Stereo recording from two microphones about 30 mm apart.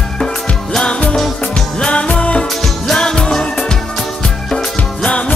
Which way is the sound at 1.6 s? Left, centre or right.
Left.